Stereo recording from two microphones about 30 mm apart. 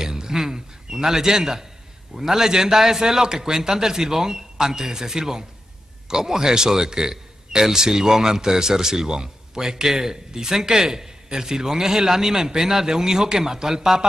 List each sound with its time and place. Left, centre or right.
0.0 s a man's voice: centre